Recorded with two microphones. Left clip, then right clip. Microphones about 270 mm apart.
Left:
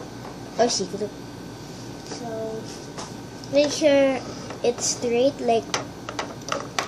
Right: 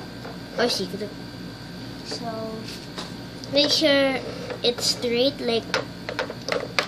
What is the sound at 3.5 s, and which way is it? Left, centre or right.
Speech, centre.